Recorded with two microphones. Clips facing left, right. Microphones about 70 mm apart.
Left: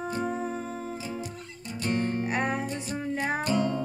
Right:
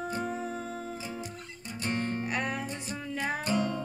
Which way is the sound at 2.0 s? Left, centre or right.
Left.